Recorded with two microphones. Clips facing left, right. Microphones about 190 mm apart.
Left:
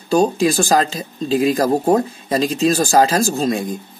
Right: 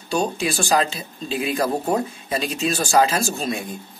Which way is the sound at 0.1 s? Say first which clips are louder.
Left 8 dB; 40° left (ahead or behind).